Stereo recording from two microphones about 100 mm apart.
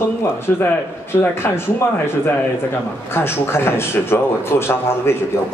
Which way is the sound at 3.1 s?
25° left (ahead or behind).